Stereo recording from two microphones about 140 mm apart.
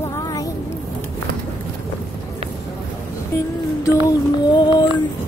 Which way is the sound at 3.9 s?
25° left (ahead or behind).